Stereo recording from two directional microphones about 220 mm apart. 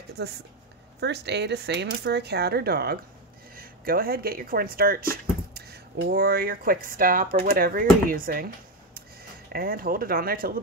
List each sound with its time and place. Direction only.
1.0 s speech: 50° right (ahead or behind)
9.5 s speech: 40° right (ahead or behind)